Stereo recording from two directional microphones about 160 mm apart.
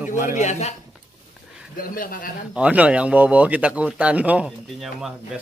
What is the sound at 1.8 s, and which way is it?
Speech, 60° left (ahead or behind).